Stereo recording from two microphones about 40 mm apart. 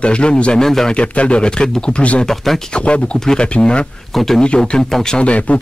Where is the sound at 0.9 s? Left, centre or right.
Left.